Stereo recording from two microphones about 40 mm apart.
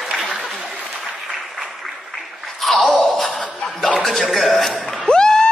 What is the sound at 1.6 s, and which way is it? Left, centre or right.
Applause, centre.